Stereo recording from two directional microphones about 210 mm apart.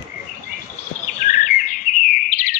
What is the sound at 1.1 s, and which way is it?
Chirp, 40° left (ahead or behind).